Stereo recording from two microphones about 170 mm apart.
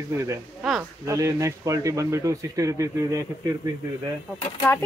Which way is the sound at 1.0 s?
20° right (ahead or behind).